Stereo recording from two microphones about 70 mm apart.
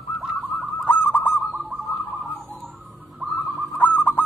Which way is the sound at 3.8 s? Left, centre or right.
Left.